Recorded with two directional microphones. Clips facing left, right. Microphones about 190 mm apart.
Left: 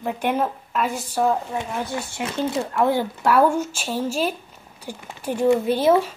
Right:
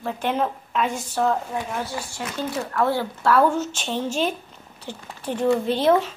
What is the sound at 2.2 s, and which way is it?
A woman's voice, 25° left (ahead or behind).